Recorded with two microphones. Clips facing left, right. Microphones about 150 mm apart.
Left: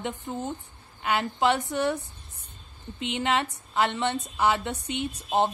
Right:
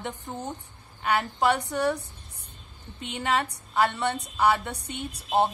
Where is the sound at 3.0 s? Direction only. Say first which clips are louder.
Left 1 dB; 20° left (ahead or behind).